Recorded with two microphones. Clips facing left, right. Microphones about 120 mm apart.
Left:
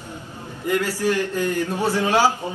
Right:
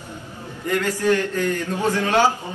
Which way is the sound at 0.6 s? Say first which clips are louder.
Right 1 dB; 15° left (ahead or behind).